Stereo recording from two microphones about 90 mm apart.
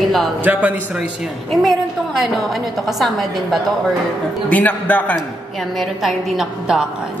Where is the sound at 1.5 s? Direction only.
Centre (ahead or behind).